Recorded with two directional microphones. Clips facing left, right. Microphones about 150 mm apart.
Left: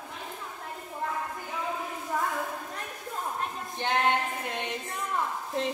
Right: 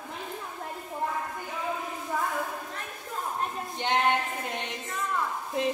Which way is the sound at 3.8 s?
15° right (ahead or behind).